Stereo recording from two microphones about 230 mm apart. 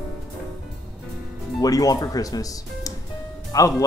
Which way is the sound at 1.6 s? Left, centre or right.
Centre.